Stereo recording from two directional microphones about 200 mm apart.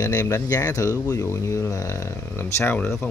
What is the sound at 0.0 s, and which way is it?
Speech, 15° left (ahead or behind).